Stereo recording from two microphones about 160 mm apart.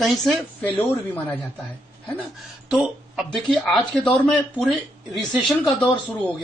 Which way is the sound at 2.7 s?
5° right (ahead or behind).